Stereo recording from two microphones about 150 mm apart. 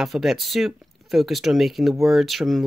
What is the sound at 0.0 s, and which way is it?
Speech, centre (ahead or behind).